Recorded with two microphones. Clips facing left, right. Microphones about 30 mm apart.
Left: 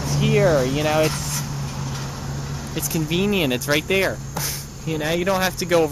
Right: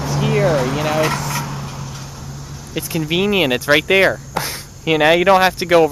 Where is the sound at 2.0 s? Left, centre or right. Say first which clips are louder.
Left 3 dB; centre.